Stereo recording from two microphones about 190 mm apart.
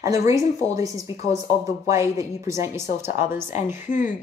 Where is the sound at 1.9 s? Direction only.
15° right (ahead or behind).